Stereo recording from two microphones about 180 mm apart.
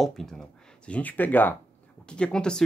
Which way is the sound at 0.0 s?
Centre (ahead or behind).